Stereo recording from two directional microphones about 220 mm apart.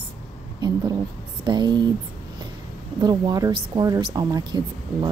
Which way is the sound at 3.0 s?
20° right (ahead or behind).